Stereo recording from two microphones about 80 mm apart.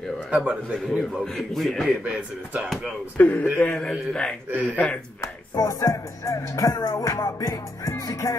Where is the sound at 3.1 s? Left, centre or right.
Left.